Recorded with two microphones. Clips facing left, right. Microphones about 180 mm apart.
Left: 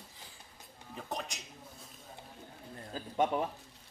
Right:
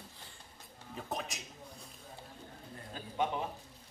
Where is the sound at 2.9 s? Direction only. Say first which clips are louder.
Left 5 dB; 35° left (ahead or behind).